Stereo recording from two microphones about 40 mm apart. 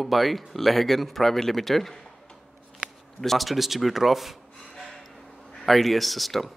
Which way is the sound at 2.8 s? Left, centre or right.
Right.